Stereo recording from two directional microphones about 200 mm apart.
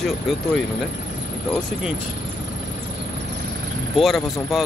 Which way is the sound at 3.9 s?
Centre (ahead or behind).